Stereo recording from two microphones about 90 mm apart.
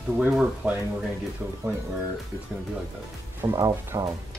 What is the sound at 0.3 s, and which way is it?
A woman's voice, 10° right (ahead or behind).